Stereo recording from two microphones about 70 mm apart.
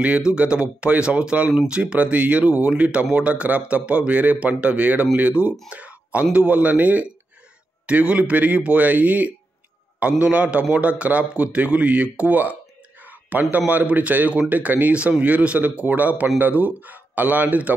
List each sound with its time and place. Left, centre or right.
0.3 s speech: centre
5.7 s a sound: centre
6.3 s speech: centre